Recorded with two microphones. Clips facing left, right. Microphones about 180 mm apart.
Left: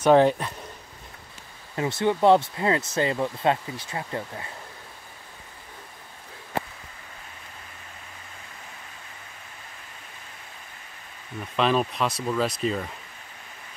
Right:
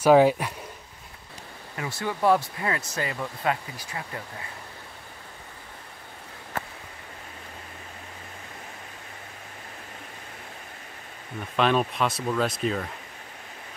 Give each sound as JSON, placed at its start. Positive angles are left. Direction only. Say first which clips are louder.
{"t": 0.0, "sound": "speech", "louder": "even", "side_deg": -10}
{"t": 1.8, "sound": "speech", "louder": "left 6 dB", "side_deg": 25}
{"t": 11.5, "sound": "speech", "louder": "even", "side_deg": 0}